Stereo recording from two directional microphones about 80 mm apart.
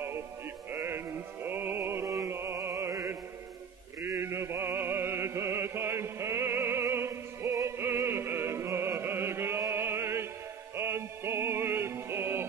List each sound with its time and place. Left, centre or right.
0.7 s music: right
4.1 s music: right
9.6 s a sound: right
10.8 s music: right